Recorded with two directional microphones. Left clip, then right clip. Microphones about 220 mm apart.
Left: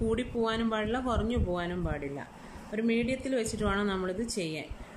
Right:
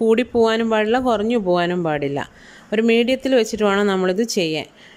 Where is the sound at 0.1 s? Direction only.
40° right (ahead or behind).